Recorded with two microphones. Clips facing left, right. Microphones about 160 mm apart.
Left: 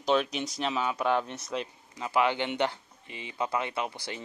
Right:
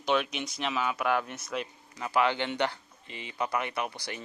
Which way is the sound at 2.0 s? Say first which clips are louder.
Even; 20° left (ahead or behind).